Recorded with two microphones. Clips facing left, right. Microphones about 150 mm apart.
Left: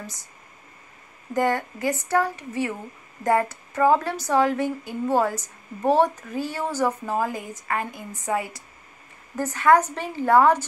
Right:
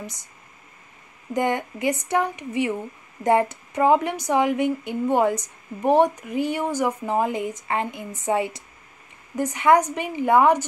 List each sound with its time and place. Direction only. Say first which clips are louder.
0.0 s speech: right 2 dB; 20° right (ahead or behind)
1.3 s a woman's voice: even; 20° right (ahead or behind)